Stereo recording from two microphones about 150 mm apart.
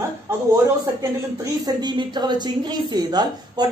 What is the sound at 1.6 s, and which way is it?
Speech, 30° right (ahead or behind).